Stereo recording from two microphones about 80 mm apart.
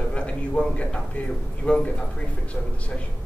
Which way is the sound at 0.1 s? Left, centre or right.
Centre.